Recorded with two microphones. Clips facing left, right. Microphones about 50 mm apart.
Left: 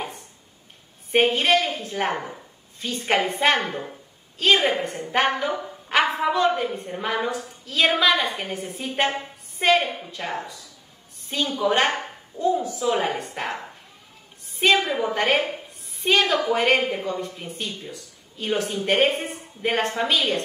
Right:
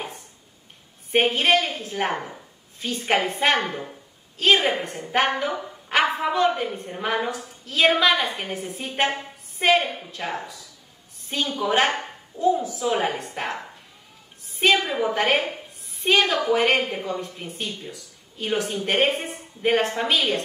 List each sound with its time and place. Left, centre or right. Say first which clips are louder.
1.1 s speech: even; centre